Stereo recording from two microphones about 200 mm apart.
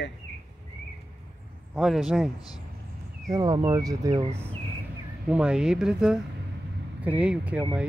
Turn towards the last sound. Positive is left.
turn(degrees=-5)  # may be behind; listen again after turning